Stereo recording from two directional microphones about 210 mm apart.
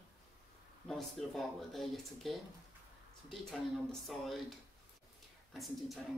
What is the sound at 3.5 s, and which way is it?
Speech, centre (ahead or behind).